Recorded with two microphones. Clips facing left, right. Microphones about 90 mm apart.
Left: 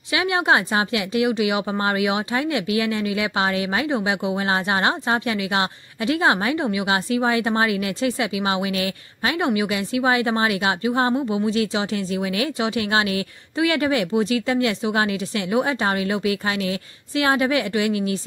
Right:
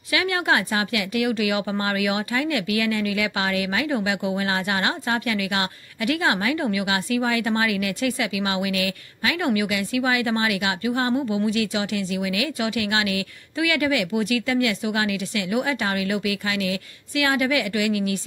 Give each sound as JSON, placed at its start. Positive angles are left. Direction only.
{"t": 0.1, "sound": "speech", "side_deg": 25}